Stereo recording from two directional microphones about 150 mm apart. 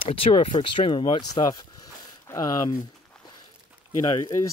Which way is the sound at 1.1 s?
30° left (ahead or behind).